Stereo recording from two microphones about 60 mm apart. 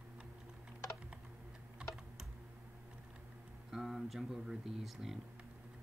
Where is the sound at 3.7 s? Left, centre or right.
Centre.